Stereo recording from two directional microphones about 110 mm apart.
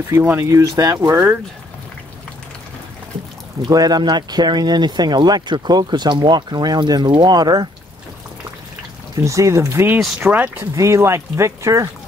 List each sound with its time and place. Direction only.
0.1 s speech: 20° right (ahead or behind)
3.6 s speech: 35° right (ahead or behind)
9.1 s speech: 30° right (ahead or behind)